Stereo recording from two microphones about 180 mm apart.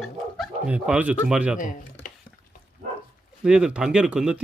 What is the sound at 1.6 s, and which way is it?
Speech, 50° left (ahead or behind).